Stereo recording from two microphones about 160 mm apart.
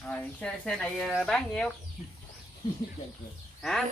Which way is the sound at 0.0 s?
10° left (ahead or behind).